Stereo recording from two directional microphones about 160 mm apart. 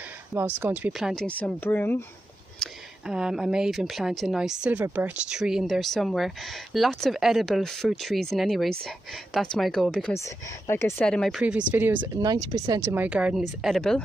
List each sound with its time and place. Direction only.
0.6 s speech: 10° right (ahead or behind)
0.9 s speech: centre (ahead or behind)
2.6 s speech: 5° right (ahead or behind)
10.1 s speech: 15° left (ahead or behind); by 12.0 s 10° right (ahead or behind)
12.0 s speech: 25° right (ahead or behind)
12.9 s speech: 10° right (ahead or behind)